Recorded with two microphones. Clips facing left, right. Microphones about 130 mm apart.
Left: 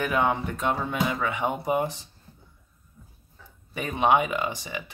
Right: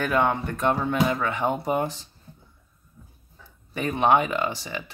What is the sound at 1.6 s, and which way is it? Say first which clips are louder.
Speech: even; 15° left (ahead or behind).